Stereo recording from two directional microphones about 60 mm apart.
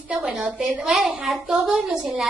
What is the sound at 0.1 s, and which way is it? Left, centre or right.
A woman's voice, centre.